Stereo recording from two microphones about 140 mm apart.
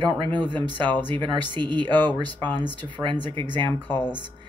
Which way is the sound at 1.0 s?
35° right (ahead or behind).